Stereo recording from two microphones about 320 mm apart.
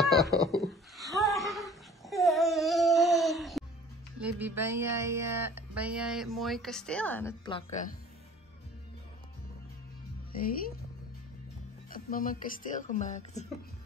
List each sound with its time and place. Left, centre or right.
0.3 s speech: centre
0.6 s laughter: centre
4.2 s speech: centre
11.9 s speech: left